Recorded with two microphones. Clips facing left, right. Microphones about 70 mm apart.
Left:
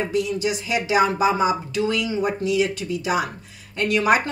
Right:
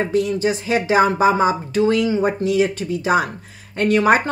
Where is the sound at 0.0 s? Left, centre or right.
Right.